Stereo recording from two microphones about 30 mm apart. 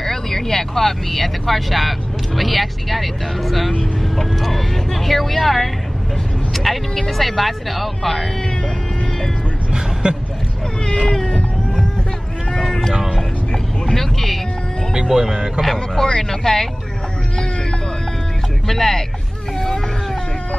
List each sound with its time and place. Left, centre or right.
0.0 s speech: centre
10.0 s speech: right
12.6 s a sound: centre
13.5 s vehicle: centre
15.0 s speech: right
15.6 s speech: centre
16.0 s speech: centre
18.7 s speech: centre